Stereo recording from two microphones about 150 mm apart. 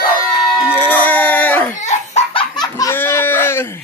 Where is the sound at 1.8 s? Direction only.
40° left (ahead or behind).